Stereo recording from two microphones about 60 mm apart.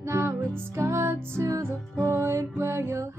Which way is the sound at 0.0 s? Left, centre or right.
Right.